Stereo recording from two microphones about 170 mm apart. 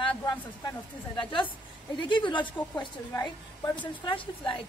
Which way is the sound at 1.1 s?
30° left (ahead or behind).